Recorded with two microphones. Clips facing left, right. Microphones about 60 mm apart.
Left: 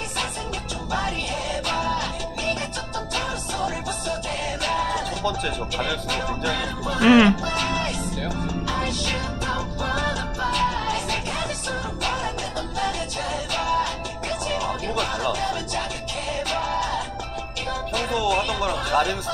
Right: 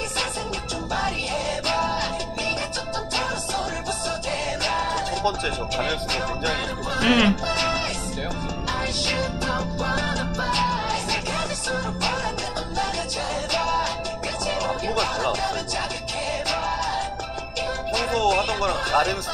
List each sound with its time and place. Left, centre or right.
1.7 s music: right
3.2 s music: right
6.4 s speech: right
7.1 s speech: centre
7.4 s music: right
14.4 s music: right
17.9 s music: right
18.7 s speech: right